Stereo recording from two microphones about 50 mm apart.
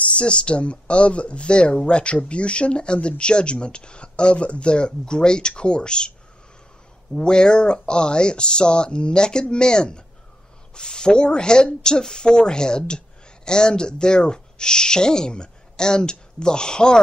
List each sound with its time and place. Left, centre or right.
0.2 s speech: left
7.2 s speech: centre